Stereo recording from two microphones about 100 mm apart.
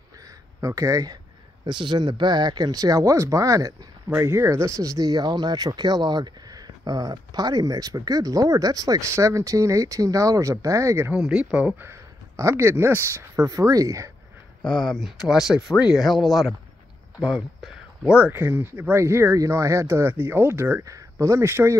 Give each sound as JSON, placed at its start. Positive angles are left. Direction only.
{"t": 0.6, "sound": "speech", "side_deg": -35}
{"t": 1.7, "sound": "speech", "side_deg": -50}
{"t": 11.1, "sound": "speech", "side_deg": -10}
{"t": 12.4, "sound": "speech", "side_deg": -25}
{"t": 14.6, "sound": "speech", "side_deg": 5}
{"t": 18.3, "sound": "speech", "side_deg": -20}